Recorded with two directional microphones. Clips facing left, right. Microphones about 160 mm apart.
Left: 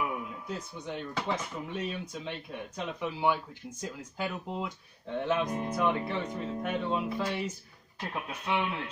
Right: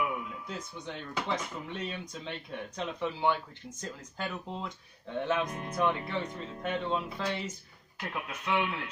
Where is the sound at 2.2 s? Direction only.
5° left (ahead or behind).